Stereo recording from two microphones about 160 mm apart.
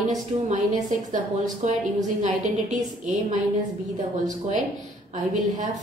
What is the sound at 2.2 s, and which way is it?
A woman's voice, 50° right (ahead or behind).